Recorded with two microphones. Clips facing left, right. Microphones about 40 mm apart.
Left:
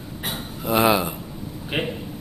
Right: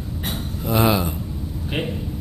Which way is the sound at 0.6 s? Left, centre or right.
Centre.